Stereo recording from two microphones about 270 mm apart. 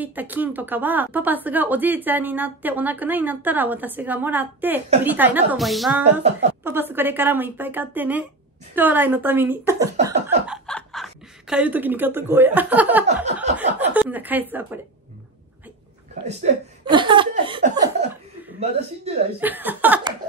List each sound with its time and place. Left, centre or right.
0.0 s a woman's voice: centre
10.4 s chuckle: centre
13.6 s a woman's voice: centre
16.3 s a woman's voice: right
19.4 s a woman's voice: centre